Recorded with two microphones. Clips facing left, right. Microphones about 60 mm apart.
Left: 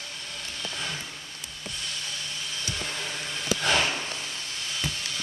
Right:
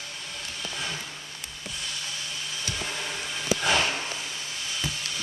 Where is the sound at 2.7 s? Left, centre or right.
Centre.